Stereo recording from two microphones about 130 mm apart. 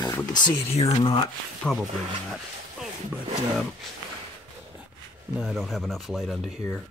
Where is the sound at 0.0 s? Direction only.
30° left (ahead or behind).